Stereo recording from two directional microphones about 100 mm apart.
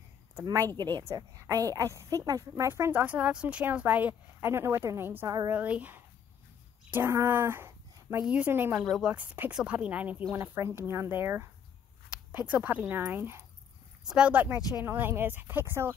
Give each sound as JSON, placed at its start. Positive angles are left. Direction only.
{"t": 0.4, "sound": "a woman's voice", "side_deg": -35}
{"t": 2.7, "sound": "a woman's voice", "side_deg": -25}
{"t": 8.7, "sound": "speech", "side_deg": -5}
{"t": 9.1, "sound": "a woman's voice", "side_deg": -15}
{"t": 12.1, "sound": "a sound", "side_deg": -15}
{"t": 12.8, "sound": "a woman's voice", "side_deg": -20}
{"t": 14.0, "sound": "speech", "side_deg": -5}
{"t": 14.3, "sound": "a woman's voice", "side_deg": -20}